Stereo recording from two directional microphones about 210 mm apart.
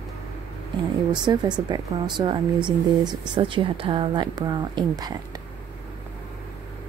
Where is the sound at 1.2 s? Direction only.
20° right (ahead or behind).